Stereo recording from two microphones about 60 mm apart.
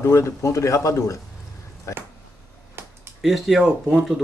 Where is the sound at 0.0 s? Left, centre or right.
Left.